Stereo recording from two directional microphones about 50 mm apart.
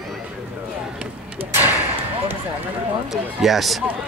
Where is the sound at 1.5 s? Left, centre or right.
Right.